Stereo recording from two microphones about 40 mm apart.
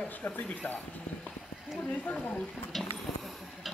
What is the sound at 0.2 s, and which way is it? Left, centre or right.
Speech, left.